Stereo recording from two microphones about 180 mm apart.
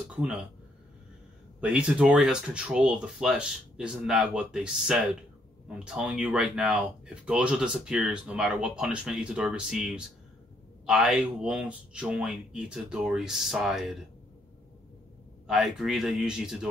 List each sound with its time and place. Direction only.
0.1 s speech: 5° right (ahead or behind)
1.6 s speech: 5° right (ahead or behind)
15.4 s speech: centre (ahead or behind)